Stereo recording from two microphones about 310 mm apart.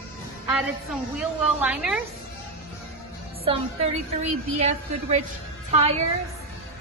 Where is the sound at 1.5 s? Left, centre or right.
Centre.